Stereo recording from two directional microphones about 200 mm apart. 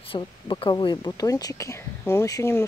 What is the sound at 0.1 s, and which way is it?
Speech, 25° left (ahead or behind).